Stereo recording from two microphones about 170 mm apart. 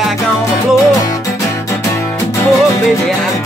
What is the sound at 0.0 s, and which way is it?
Music, centre (ahead or behind).